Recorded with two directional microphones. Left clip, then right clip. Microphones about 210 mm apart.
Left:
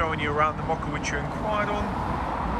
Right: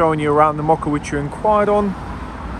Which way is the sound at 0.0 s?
15° right (ahead or behind).